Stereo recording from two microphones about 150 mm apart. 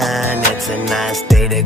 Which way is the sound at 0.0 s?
Centre (ahead or behind).